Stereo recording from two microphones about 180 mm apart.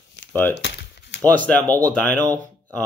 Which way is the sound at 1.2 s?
10° left (ahead or behind).